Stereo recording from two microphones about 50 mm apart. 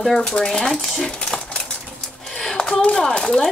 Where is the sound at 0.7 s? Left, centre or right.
Centre.